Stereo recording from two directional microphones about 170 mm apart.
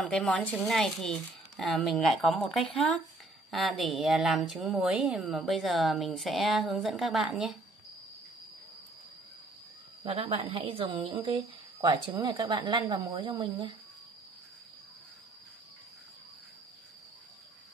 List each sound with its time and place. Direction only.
0.0 s a woman's voice: 5° left (ahead or behind)
10.0 s a woman's voice: 35° right (ahead or behind)